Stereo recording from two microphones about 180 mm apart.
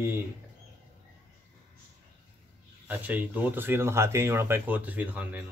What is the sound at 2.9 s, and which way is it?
Speech, 10° right (ahead or behind).